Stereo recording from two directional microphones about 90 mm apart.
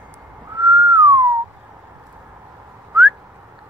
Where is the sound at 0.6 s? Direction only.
25° right (ahead or behind).